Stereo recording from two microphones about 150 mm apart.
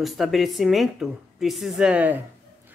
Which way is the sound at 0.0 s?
Centre (ahead or behind).